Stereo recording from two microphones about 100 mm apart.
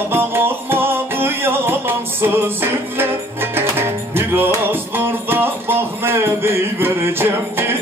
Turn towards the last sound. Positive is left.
turn(degrees=-25)  # may be behind; listen again after turning